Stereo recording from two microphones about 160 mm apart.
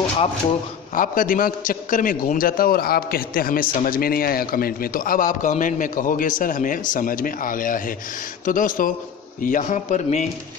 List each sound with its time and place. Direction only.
0.9 s a man's voice: 60° left (ahead or behind)